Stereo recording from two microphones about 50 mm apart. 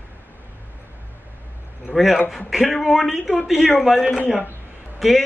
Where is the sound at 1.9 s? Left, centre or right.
Centre.